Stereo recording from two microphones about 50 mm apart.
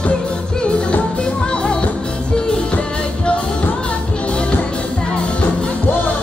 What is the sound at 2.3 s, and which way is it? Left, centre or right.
Music, centre.